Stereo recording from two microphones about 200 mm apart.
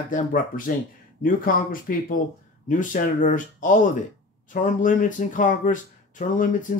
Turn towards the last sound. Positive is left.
turn(degrees=40)  # may be behind; listen again after turning